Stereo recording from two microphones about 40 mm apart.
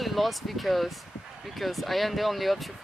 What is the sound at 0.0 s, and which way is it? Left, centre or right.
Speech, centre.